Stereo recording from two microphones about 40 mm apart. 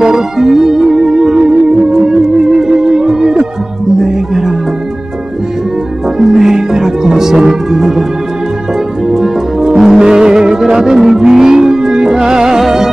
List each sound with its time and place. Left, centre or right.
0.0 s music: centre
6.1 s music: centre
9.1 s music: centre